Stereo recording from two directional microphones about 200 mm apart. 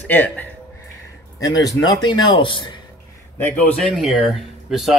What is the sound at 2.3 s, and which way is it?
Speech, 25° left (ahead or behind).